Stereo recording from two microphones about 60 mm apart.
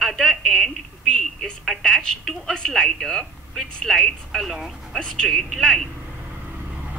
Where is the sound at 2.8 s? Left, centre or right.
Centre.